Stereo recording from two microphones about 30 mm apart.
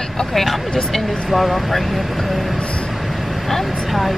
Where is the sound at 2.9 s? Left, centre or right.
Centre.